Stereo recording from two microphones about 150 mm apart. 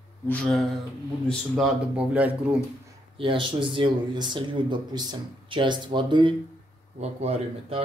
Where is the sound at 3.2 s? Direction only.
35° right (ahead or behind).